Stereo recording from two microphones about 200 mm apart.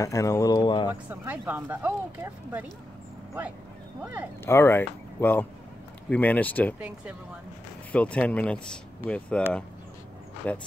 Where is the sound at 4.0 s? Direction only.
10° right (ahead or behind).